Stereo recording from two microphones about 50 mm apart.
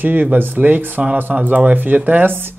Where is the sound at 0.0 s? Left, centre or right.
Right.